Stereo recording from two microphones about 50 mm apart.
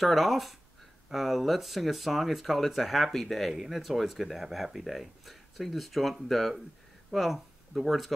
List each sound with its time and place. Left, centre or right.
0.0 s speech: centre